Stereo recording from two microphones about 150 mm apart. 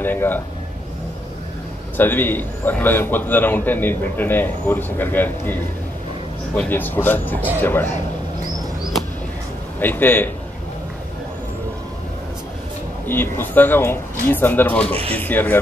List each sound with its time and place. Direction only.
0.0 s a man's voice: 15° left (ahead or behind)
2.0 s a man's voice: 15° left (ahead or behind)
9.8 s a man's voice: 10° left (ahead or behind)
13.0 s a man's voice: 15° left (ahead or behind)